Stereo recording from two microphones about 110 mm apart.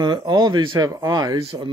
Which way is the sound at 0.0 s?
40° right (ahead or behind).